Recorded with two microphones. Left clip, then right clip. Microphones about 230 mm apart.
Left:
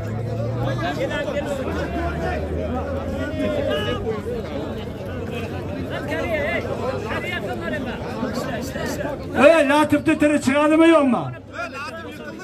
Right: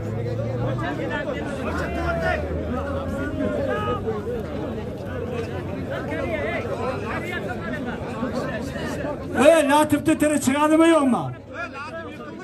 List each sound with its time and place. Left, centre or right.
6.1 s chatter: left
9.4 s a man's voice: centre